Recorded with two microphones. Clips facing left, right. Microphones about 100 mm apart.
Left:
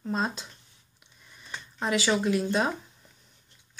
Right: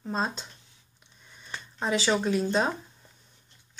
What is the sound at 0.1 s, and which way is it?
Speech, 5° left (ahead or behind).